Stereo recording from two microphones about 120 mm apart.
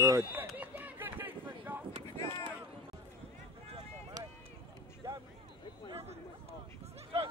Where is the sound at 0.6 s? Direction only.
15° right (ahead or behind).